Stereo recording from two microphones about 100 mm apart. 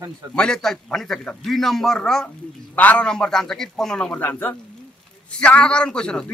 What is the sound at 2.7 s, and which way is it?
A man's voice, 15° left (ahead or behind).